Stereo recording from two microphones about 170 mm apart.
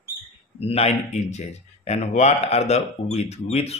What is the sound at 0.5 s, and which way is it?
Speech, 35° left (ahead or behind).